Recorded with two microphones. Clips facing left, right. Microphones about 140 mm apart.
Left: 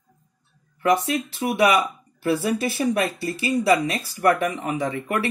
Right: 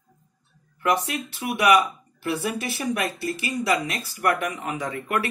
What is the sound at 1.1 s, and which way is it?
Speech, 30° left (ahead or behind).